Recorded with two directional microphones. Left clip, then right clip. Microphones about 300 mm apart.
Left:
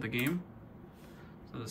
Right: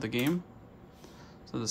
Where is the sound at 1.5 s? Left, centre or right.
Centre.